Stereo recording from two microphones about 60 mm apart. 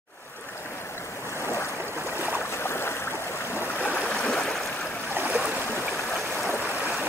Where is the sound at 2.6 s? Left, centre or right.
Left.